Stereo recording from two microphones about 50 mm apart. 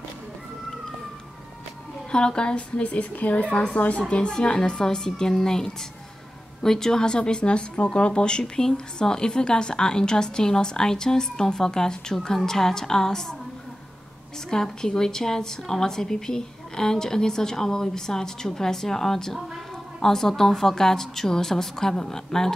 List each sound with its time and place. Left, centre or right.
2.0 s a woman's voice: centre
14.5 s speech: centre